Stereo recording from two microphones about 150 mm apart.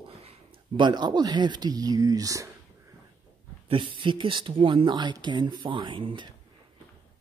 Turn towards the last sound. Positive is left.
turn(degrees=-35)  # may be behind; listen again after turning